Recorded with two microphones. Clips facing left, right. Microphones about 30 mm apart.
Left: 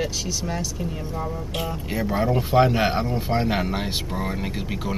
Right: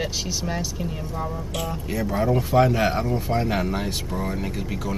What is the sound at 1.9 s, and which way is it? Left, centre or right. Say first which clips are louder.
Speech: even; left.